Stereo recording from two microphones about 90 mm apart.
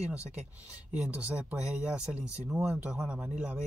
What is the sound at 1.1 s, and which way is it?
Speech, 15° right (ahead or behind).